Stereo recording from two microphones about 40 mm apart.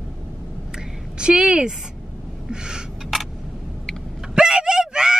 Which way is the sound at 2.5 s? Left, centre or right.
Centre.